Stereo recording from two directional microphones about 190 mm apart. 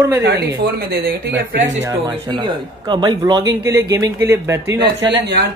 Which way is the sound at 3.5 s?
60° right (ahead or behind).